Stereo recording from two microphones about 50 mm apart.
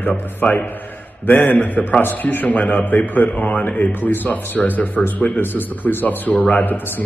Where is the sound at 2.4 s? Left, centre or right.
Left.